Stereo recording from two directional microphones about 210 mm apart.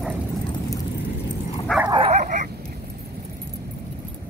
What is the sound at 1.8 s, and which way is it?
Dog, 25° right (ahead or behind).